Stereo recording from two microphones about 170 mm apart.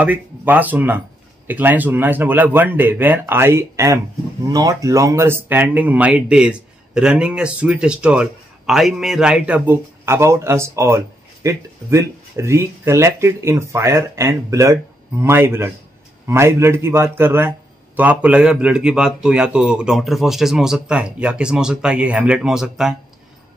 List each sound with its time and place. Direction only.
0.0 s a man's voice: 10° right (ahead or behind)